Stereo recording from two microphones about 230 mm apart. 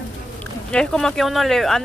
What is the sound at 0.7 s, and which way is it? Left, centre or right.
Speech, centre.